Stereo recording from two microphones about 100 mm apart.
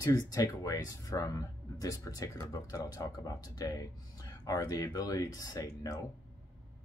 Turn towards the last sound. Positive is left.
turn(degrees=35)  # may be behind; listen again after turning